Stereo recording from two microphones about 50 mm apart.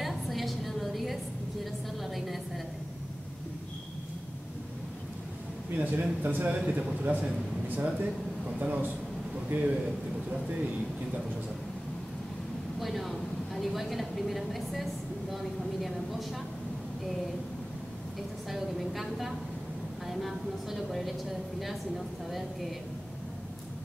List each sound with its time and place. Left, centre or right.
0.0 s a sound: centre
5.8 s a man's voice: right
12.7 s a woman's voice: centre
18.5 s a woman's voice: centre